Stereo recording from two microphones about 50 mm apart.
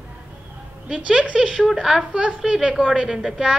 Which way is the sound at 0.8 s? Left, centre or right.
Centre.